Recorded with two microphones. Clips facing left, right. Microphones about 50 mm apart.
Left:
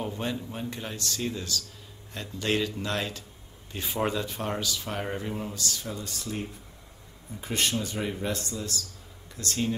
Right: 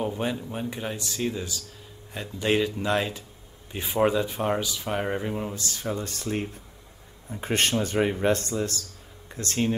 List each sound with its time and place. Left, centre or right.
0.0 s speech: centre
5.6 s speech: right